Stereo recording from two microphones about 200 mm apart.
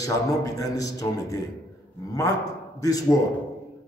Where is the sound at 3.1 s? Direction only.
15° left (ahead or behind).